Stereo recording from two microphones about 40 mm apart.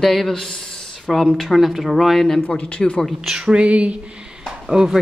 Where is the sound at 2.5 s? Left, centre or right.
Left.